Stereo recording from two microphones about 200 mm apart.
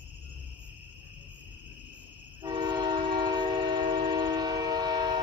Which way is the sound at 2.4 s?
25° right (ahead or behind).